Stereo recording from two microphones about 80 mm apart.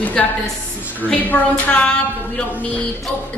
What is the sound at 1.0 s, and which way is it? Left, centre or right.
Speech, left.